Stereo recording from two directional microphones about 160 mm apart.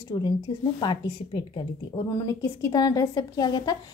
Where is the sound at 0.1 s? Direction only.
25° left (ahead or behind).